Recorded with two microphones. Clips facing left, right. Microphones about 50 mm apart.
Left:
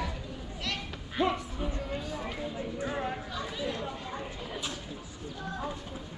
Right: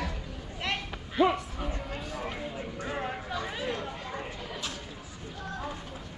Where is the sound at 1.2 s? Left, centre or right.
Centre.